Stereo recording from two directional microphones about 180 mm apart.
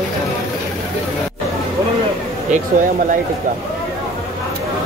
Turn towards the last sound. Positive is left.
turn(degrees=-45)  # may be behind; listen again after turning